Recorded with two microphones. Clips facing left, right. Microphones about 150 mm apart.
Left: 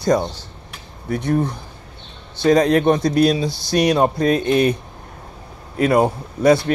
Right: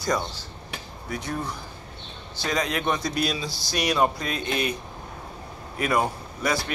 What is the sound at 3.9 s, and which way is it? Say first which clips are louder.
Speech: left 5 dB; 45° left (ahead or behind).